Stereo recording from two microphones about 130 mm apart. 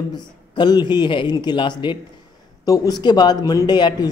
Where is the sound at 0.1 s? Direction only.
35° left (ahead or behind).